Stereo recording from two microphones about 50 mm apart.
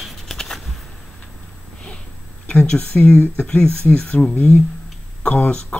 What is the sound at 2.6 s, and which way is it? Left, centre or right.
Speech, left.